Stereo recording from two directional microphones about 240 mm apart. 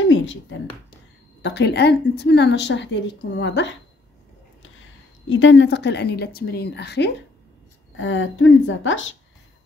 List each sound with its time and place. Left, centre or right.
0.0 s speech: left
5.3 s speech: left
7.9 s speech: left